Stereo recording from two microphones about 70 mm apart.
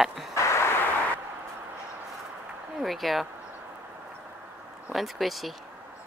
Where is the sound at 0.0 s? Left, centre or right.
Centre.